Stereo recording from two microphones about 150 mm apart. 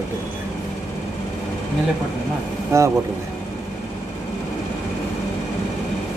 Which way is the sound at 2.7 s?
20° right (ahead or behind).